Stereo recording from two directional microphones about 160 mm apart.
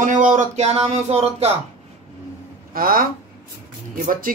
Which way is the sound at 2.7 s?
65° right (ahead or behind).